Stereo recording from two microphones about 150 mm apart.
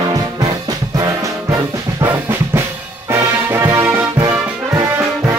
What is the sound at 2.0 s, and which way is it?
Music, 15° right (ahead or behind).